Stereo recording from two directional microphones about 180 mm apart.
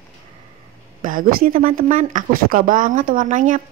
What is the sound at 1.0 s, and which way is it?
A woman's voice, 50° right (ahead or behind).